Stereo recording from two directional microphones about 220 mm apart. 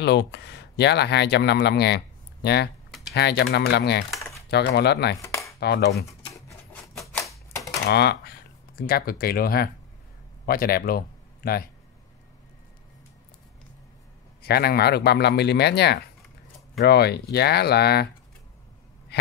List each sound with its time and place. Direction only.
0.0 s speech: 50° left (ahead or behind)
5.2 s a sound: 15° left (ahead or behind)
5.6 s speech: 45° left (ahead or behind)
6.3 s a sound: 5° left (ahead or behind)
7.2 s typewriter: 15° left (ahead or behind)
7.9 s speech: 50° left (ahead or behind)
14.4 s speech: 45° left (ahead or behind)